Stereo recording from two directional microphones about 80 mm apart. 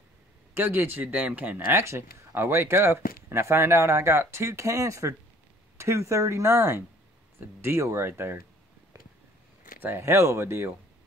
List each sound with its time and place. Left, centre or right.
0.6 s speech: right
9.8 s speech: right